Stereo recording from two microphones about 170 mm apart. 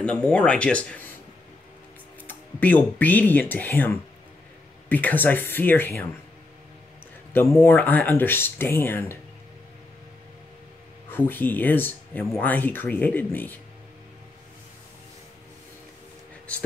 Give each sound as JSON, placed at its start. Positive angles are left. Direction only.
{"t": 0.0, "sound": "speech", "side_deg": 5}
{"t": 2.2, "sound": "speech", "side_deg": 10}
{"t": 7.3, "sound": "speech", "side_deg": 15}
{"t": 11.1, "sound": "speech", "side_deg": 10}